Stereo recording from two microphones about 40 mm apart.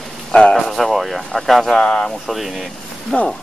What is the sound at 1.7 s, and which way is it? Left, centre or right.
Speech, left.